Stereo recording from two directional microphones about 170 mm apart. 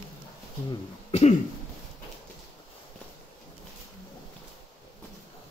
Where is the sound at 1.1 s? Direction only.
35° left (ahead or behind).